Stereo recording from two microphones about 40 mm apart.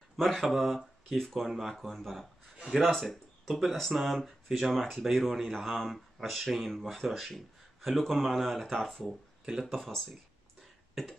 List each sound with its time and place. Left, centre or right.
0.2 s speech: centre